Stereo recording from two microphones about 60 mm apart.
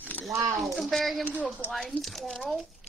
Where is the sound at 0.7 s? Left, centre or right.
Centre.